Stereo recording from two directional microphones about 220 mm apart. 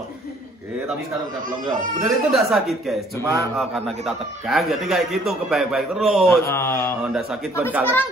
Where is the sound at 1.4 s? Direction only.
40° right (ahead or behind).